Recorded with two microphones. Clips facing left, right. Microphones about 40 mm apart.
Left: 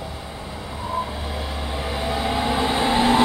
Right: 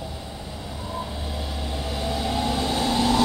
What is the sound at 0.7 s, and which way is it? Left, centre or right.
Vehicle, left.